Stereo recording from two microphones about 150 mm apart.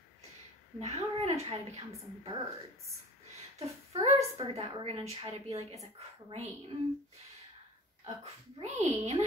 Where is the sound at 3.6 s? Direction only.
45° right (ahead or behind).